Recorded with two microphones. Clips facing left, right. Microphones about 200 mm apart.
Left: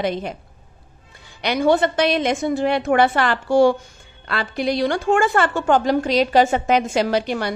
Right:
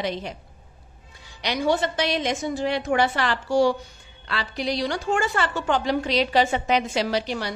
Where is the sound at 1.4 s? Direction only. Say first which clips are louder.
Left 6 dB; 55° left (ahead or behind).